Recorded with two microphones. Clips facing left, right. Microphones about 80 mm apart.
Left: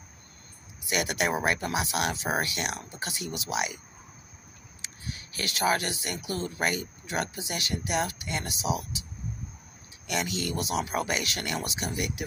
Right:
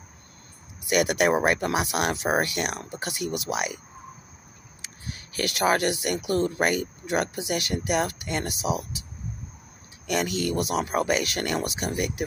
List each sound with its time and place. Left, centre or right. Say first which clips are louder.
0.8 s speech: right 7 dB; right
4.8 s speech: right 1 dB; right
10.0 s speech: right 5 dB; right